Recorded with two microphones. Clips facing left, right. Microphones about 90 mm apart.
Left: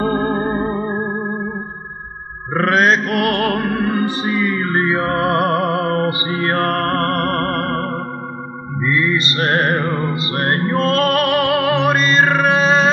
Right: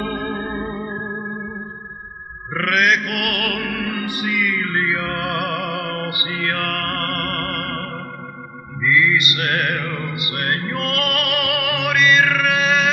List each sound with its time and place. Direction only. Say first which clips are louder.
0.0 s music: left 7 dB; 30° left (ahead or behind)
2.5 s music: left 4 dB; 30° left (ahead or behind)